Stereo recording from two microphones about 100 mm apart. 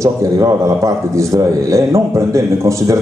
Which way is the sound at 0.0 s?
35° right (ahead or behind).